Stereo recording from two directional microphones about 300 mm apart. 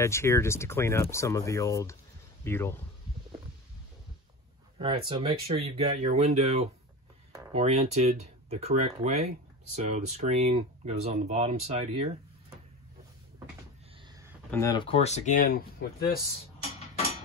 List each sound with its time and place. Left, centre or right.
0.0 s speech: centre
4.7 s speech: centre
14.5 s speech: centre; by 16.2 s left